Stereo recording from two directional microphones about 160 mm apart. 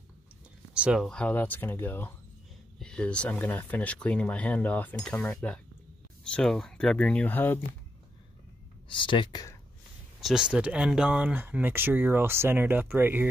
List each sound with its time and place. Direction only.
0.7 s speech: 5° right (ahead or behind); by 7.6 s 10° left (ahead or behind)
8.9 s speech: 30° left (ahead or behind)
10.2 s speech: 5° right (ahead or behind)